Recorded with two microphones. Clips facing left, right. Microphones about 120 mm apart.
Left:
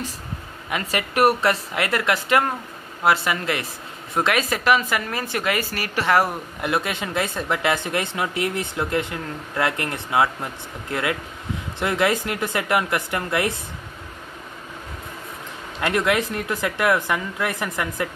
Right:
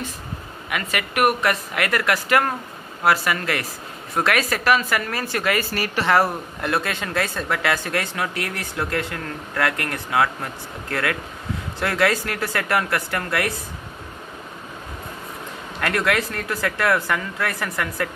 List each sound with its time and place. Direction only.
0.7 s speech: 30° left (ahead or behind)
15.8 s speech: 20° left (ahead or behind)